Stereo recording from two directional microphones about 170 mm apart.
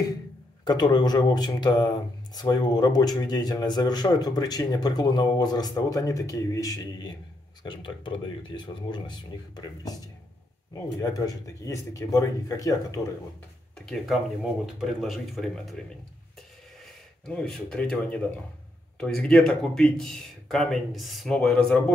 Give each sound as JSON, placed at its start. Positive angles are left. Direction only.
{"t": 0.7, "sound": "a man's voice", "side_deg": 25}
{"t": 13.7, "sound": "speech", "side_deg": 5}
{"t": 16.8, "sound": "speech", "side_deg": 5}